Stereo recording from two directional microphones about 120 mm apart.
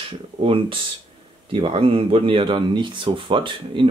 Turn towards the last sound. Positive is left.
turn(degrees=-45)  # may be behind; listen again after turning